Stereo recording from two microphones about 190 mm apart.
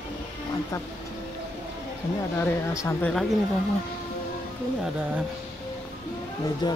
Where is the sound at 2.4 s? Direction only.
10° left (ahead or behind).